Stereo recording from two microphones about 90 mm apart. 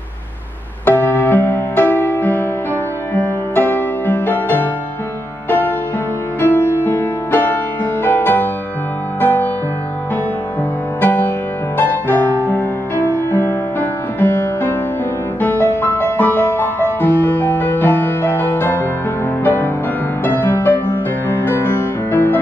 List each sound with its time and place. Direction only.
0.8 s music: 20° left (ahead or behind)
6.4 s music: 20° left (ahead or behind)
11.0 s music: 20° left (ahead or behind)